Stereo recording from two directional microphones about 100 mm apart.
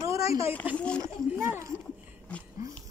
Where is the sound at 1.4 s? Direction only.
30° right (ahead or behind).